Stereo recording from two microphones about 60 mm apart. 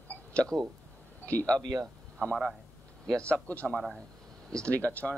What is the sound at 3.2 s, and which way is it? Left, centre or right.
Speech, left.